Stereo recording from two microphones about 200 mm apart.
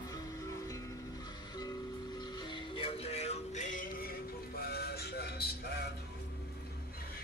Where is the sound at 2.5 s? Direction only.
25° left (ahead or behind); by 5.4 s 50° left (ahead or behind).